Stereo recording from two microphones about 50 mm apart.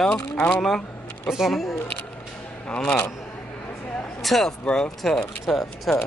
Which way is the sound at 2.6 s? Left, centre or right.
Left.